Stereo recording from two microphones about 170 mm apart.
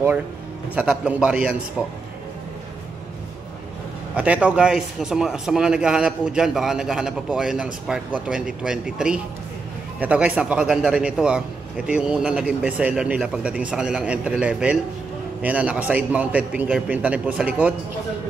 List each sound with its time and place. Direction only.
0.7 s a man's voice: 5° right (ahead or behind)
4.1 s a man's voice: 5° right (ahead or behind)